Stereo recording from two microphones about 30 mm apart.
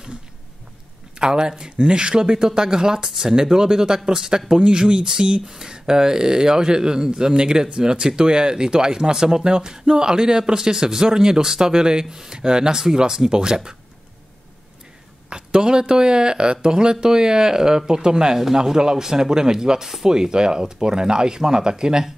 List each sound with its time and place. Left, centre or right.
1.2 s speech: right
4.6 s speech: right
15.2 s speech: right